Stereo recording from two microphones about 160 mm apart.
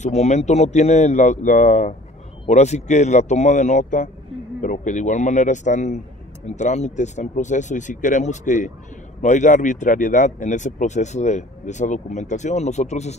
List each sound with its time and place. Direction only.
0.0 s speech: 45° left (ahead or behind)